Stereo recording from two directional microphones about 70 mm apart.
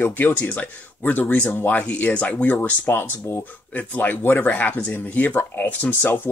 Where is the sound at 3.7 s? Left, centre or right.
Left.